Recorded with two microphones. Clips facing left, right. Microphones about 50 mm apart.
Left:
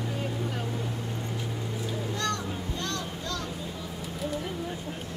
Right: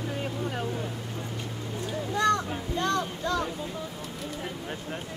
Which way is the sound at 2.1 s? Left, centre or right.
Centre.